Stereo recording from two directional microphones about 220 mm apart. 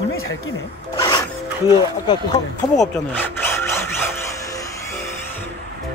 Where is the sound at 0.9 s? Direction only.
15° left (ahead or behind).